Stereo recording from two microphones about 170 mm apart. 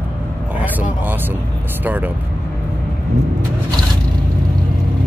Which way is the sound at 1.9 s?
10° right (ahead or behind).